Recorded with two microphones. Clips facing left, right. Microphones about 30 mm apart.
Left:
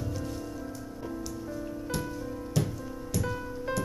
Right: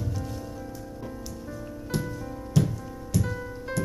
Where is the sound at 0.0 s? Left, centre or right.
Centre.